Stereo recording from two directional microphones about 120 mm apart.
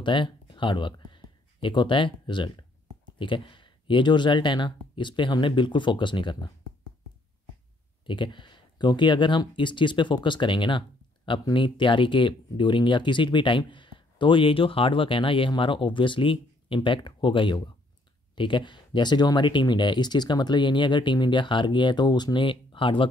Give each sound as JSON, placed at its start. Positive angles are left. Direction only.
{"t": 0.0, "sound": "speech", "side_deg": 40}
{"t": 8.1, "sound": "speech", "side_deg": 40}